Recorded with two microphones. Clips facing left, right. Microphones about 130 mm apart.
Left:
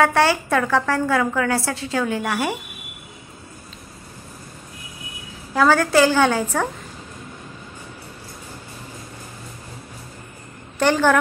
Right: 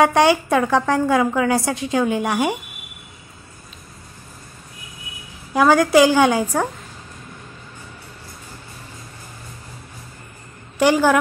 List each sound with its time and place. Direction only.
0.0 s a woman's voice: 15° right (ahead or behind)
5.5 s a woman's voice: 15° right (ahead or behind)
10.8 s a woman's voice: 10° right (ahead or behind)